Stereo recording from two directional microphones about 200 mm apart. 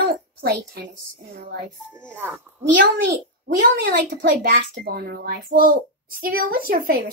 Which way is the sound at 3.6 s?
50° right (ahead or behind).